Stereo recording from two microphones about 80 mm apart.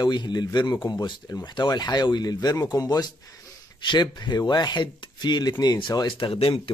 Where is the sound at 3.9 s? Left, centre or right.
Left.